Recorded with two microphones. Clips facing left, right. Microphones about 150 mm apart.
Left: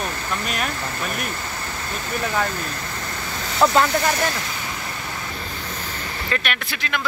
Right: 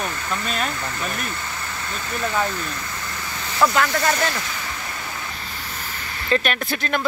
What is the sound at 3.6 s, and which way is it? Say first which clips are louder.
Speech: left 2 dB; 30° left (ahead or behind).